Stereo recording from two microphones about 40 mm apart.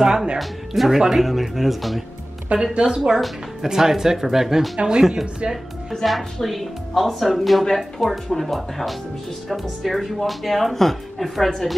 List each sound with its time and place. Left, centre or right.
0.0 s speech: centre
0.4 s speech: centre
0.9 s speech: centre
2.5 s speech: right
2.9 s speech: centre
6.0 s speech: centre